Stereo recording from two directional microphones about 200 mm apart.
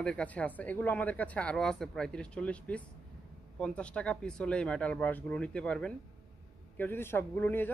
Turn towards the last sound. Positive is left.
turn(degrees=10)  # may be behind; listen again after turning